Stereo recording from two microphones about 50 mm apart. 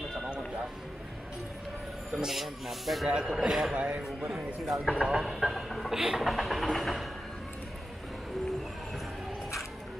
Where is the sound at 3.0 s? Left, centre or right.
Centre.